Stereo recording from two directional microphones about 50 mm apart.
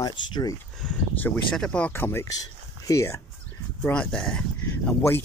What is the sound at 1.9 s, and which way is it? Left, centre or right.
Speech, left.